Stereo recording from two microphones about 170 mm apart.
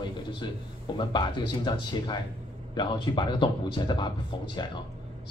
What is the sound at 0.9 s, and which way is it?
Speech, 25° left (ahead or behind).